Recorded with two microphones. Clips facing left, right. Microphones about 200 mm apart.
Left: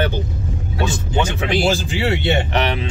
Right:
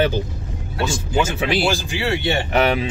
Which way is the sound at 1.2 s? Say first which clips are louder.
Even; 5° right (ahead or behind).